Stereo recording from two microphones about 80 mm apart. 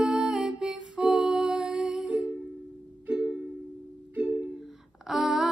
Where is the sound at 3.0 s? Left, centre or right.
Centre.